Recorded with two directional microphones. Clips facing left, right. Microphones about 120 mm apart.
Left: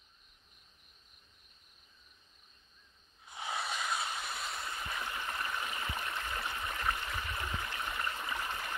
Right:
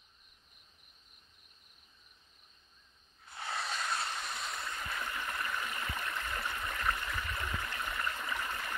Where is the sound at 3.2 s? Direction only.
10° left (ahead or behind).